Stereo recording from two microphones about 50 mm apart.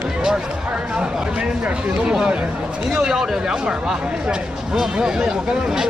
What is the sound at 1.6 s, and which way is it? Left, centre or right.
Speech, right.